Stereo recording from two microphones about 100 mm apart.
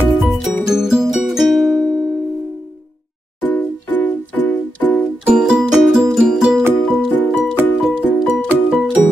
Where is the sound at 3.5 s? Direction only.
20° left (ahead or behind).